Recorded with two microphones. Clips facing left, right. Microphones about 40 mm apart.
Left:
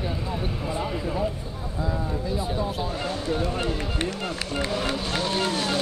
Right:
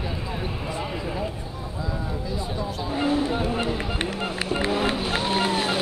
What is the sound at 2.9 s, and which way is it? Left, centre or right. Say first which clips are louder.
Run: right 8 dB; centre.